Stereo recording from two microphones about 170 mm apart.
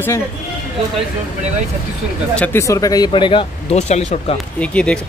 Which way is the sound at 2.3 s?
10° left (ahead or behind).